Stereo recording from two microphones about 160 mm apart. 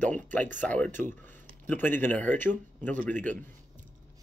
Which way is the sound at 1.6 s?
10° left (ahead or behind).